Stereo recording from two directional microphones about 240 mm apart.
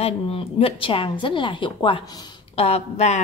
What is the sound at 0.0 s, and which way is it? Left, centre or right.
A woman's voice, left.